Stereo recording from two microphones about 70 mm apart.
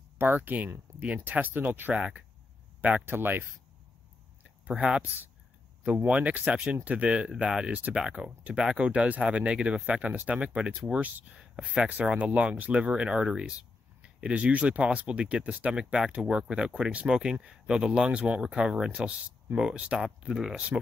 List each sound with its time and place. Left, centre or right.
0.2 s speech: right
4.6 s speech: centre
20.5 s speech: centre